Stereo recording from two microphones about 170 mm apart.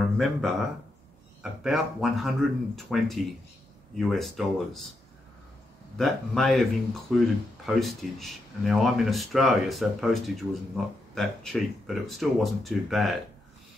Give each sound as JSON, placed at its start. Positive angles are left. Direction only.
{"t": 0.0, "sound": "a sound", "side_deg": 0}
{"t": 1.4, "sound": "speech", "side_deg": -5}
{"t": 5.9, "sound": "speech", "side_deg": 0}